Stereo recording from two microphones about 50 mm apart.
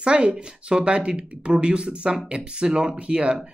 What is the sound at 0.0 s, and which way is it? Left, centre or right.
Speech, right.